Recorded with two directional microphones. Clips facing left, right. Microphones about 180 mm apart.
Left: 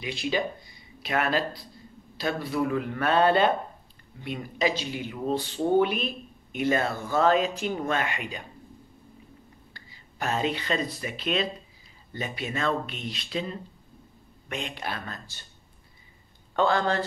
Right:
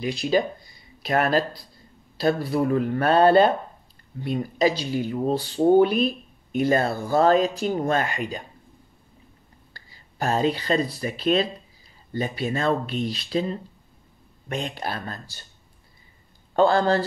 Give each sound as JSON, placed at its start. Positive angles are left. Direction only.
{"t": 0.0, "sound": "speech", "side_deg": -40}
{"t": 9.8, "sound": "speech", "side_deg": -35}
{"t": 16.5, "sound": "speech", "side_deg": -35}